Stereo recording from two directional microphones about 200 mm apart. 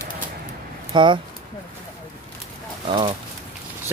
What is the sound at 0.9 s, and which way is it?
Speech, 25° right (ahead or behind).